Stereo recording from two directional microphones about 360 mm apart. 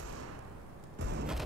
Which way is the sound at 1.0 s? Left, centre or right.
Right.